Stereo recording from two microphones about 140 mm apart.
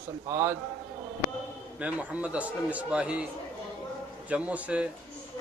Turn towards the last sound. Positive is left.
turn(degrees=-10)  # may be behind; listen again after turning